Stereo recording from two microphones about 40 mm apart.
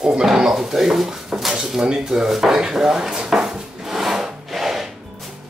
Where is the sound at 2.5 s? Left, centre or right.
Centre.